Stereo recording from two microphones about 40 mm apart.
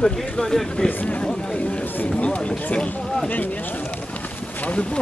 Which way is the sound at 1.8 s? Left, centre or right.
Left.